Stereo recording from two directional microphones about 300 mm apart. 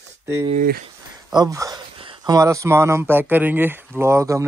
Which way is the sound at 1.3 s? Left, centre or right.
Centre.